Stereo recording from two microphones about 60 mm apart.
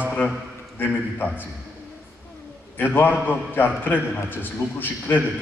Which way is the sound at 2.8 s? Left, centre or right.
Left.